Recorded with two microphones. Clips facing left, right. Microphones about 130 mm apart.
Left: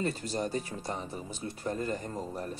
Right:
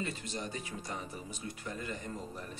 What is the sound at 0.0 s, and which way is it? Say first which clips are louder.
Speech: left 7 dB; 40° left (ahead or behind).